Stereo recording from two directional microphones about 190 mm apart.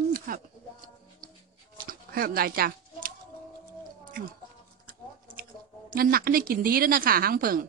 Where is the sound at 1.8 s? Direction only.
50° right (ahead or behind).